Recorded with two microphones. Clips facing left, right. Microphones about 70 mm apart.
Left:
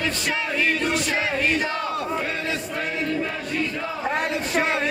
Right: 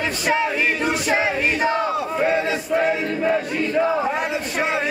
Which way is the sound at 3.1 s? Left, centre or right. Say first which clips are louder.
Right 5 dB; right.